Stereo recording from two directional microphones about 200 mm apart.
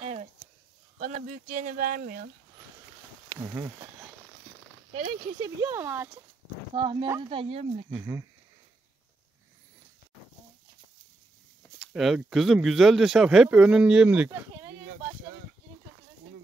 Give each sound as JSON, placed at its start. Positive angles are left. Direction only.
{"t": 0.0, "sound": "a sound", "side_deg": -35}
{"t": 0.9, "sound": "speech", "side_deg": -40}
{"t": 3.3, "sound": "speech", "side_deg": -15}
{"t": 5.4, "sound": "speech", "side_deg": -15}
{"t": 6.7, "sound": "speech", "side_deg": -25}
{"t": 11.8, "sound": "speech", "side_deg": 0}